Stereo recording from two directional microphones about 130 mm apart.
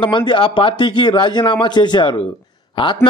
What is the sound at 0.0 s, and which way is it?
Speech, 40° left (ahead or behind).